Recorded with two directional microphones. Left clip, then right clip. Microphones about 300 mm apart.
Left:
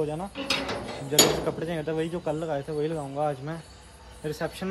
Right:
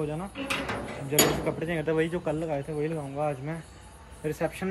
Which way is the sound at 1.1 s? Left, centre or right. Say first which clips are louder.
Left 3 dB; centre.